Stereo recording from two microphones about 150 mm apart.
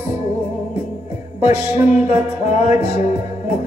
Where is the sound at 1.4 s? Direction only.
45° left (ahead or behind).